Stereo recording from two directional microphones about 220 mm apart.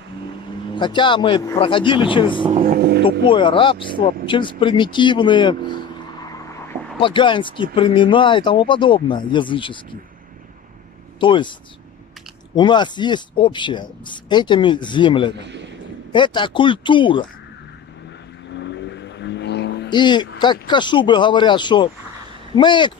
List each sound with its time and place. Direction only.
0.7 s speech: 20° left (ahead or behind)
2.6 s speech: 45° right (ahead or behind)
3.3 s speech: 25° left (ahead or behind)
7.0 s speech: 20° left (ahead or behind)
11.1 s speech: 20° left (ahead or behind)
12.5 s speech: 20° left (ahead or behind)
15.3 s speech: 50° right (ahead or behind)
16.1 s speech: 20° left (ahead or behind)
18.5 s vehicle: 55° left (ahead or behind)
19.9 s speech: 20° left (ahead or behind)